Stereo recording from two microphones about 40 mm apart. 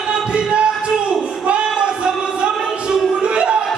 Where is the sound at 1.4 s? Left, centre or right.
Right.